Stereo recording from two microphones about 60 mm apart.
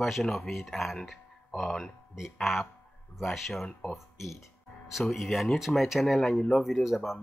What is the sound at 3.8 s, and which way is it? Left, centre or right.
Speech, left.